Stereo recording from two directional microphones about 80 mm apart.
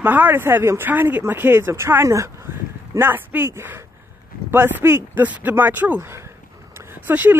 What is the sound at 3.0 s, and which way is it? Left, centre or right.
Speech, right.